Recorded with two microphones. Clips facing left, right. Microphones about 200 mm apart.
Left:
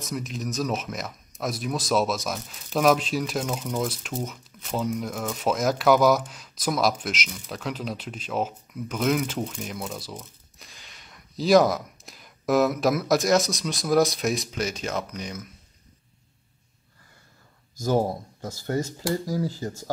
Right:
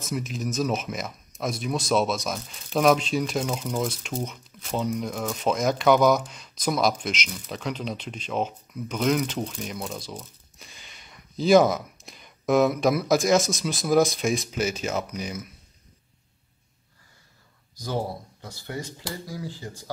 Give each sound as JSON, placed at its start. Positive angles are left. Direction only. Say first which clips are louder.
{"t": 0.0, "sound": "speech", "louder": "right 1 dB", "side_deg": 0}
{"t": 17.7, "sound": "speech", "louder": "left 6 dB", "side_deg": 45}